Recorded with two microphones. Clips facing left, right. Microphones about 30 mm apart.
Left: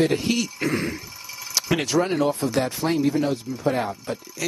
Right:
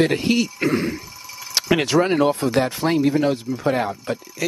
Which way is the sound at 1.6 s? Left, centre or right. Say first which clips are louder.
Right 3 dB; right.